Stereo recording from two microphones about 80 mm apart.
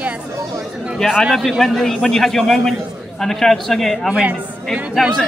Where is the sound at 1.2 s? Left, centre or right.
Centre.